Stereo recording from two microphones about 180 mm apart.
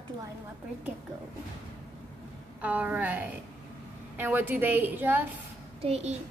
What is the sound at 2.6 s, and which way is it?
A woman's voice, 10° right (ahead or behind).